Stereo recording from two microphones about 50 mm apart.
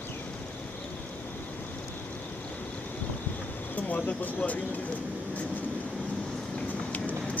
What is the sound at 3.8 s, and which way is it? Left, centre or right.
Speech, left.